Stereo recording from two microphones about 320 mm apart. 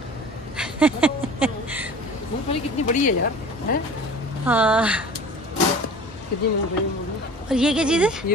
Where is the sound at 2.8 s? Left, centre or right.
Left.